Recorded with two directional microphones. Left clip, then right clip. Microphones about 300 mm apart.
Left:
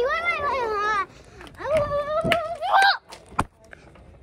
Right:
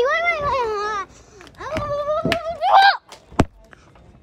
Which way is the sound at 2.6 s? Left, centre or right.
Right.